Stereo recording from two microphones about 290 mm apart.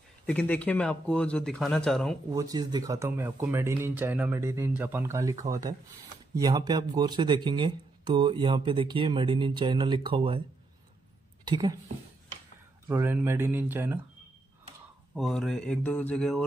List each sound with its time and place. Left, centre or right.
0.3 s speech: centre
2.3 s speech: centre
11.4 s a woman's voice: centre
12.8 s speech: centre
15.1 s speech: centre